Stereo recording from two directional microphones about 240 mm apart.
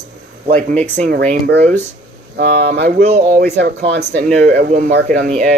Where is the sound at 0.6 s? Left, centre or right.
Right.